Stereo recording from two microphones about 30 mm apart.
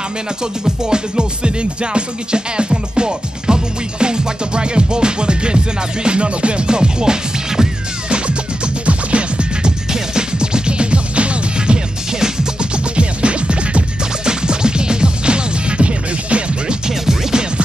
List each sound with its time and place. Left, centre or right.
0.7 s music: right
8.8 s music: right
9.6 s music: right
12.9 s music: right
14.2 s music: right
17.0 s music: centre